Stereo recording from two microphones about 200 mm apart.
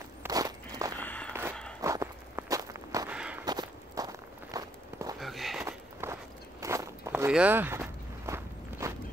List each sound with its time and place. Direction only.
0.2 s walk: 20° right (ahead or behind)
0.9 s a sound: 10° left (ahead or behind)
1.8 s walk: 15° right (ahead or behind)
3.4 s walk: 20° right (ahead or behind)
5.2 s a sound: centre (ahead or behind)
5.7 s walk: 15° right (ahead or behind)